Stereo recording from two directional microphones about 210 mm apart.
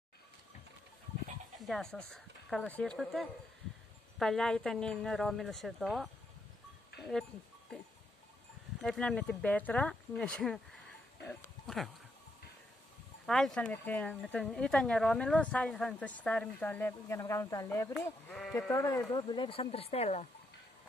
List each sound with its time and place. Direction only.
1.6 s speech: centre (ahead or behind)
8.8 s speech: 5° left (ahead or behind)
11.2 s a sound: centre (ahead or behind)
13.2 s speech: centre (ahead or behind); by 20.2 s 30° left (ahead or behind)